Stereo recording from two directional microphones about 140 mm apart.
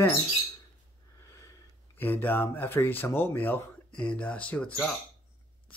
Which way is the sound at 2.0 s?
15° left (ahead or behind).